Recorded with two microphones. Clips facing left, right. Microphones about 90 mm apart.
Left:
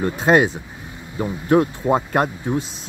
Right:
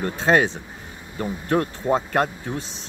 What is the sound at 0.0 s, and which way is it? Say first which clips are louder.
Speech: left 3 dB; 15° left (ahead or behind).